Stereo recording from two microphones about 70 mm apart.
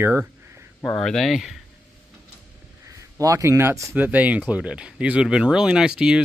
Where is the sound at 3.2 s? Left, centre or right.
Right.